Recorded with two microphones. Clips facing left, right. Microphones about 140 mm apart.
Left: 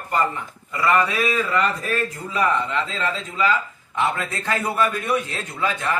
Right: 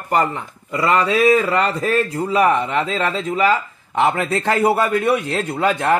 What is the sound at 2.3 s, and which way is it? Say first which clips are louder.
A man's voice: right 5 dB; 65° right (ahead or behind).